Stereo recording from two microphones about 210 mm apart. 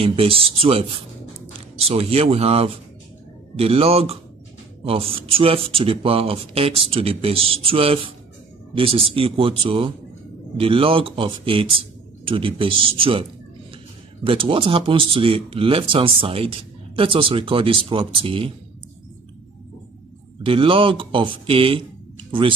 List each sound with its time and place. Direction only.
0.0 s speech: 25° right (ahead or behind)
20.4 s speech: 25° right (ahead or behind)